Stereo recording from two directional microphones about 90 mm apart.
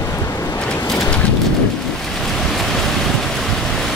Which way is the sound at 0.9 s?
5° left (ahead or behind).